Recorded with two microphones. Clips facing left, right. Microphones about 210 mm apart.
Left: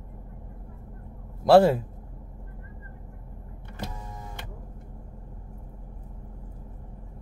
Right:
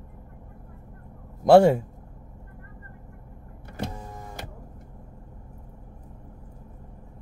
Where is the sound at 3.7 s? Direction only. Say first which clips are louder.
Right 4 dB; 40° right (ahead or behind).